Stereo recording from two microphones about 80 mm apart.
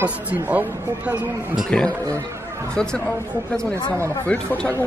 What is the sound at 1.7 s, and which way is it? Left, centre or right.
Speech, centre.